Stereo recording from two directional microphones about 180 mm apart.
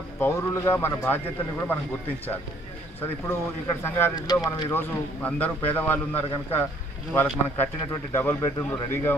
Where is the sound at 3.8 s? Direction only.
15° left (ahead or behind).